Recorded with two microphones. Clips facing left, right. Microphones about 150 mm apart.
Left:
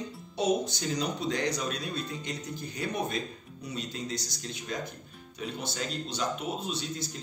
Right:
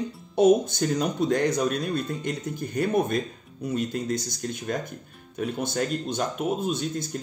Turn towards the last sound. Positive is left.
turn(degrees=-50)  # may be behind; listen again after turning